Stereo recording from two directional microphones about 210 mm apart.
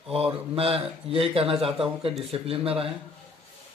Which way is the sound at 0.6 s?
25° right (ahead or behind).